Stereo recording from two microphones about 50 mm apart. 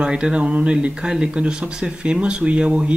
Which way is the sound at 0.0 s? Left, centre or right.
Right.